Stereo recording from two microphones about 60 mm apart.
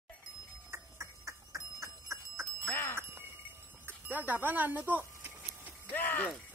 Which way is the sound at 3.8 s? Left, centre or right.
Right.